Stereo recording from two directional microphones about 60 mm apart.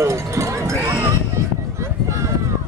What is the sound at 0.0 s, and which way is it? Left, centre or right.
Run, right.